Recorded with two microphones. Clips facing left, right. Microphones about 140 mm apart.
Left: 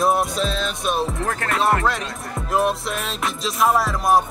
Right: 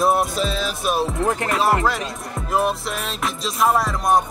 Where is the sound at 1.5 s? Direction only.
Centre (ahead or behind).